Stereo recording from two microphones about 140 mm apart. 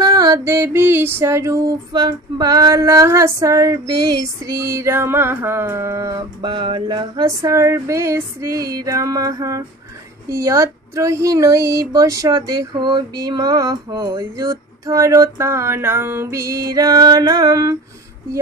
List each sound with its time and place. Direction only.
0.0 s music: 25° right (ahead or behind)